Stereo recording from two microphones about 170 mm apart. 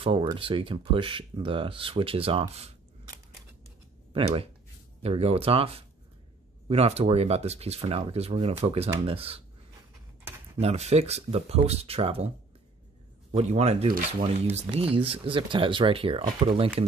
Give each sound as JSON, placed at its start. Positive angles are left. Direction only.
{"t": 0.0, "sound": "speech", "side_deg": -30}
{"t": 4.1, "sound": "speech", "side_deg": -35}
{"t": 10.6, "sound": "speech", "side_deg": -40}
{"t": 13.3, "sound": "speech", "side_deg": -40}